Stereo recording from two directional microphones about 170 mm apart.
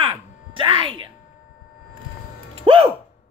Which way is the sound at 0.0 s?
30° right (ahead or behind).